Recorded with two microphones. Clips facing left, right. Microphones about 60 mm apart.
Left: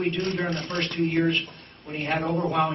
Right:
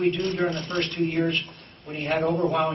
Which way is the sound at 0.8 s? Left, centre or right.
Centre.